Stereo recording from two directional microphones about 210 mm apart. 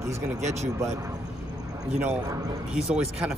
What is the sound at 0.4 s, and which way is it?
Speech, 35° right (ahead or behind).